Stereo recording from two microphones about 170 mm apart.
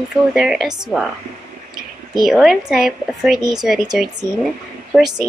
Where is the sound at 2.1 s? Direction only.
Centre (ahead or behind).